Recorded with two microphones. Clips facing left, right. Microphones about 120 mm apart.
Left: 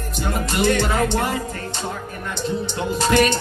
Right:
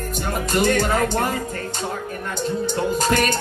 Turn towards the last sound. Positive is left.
turn(degrees=-45)  # may be behind; listen again after turning